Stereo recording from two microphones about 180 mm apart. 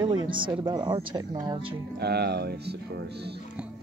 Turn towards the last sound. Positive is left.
turn(degrees=-65)  # may be behind; listen again after turning